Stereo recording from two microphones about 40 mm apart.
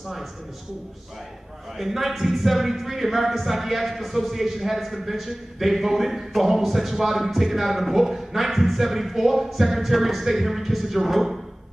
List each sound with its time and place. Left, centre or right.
1.8 s speech: centre